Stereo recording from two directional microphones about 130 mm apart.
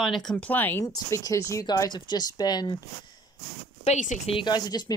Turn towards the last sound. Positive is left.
turn(degrees=30)  # may be behind; listen again after turning